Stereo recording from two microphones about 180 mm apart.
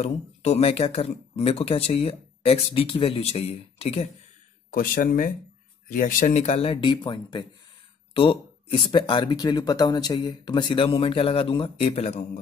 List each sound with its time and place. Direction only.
0.0 s speech: 35° left (ahead or behind)
4.7 s speech: 50° left (ahead or behind)